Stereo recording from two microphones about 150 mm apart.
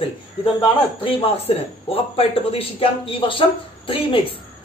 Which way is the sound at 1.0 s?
40° left (ahead or behind).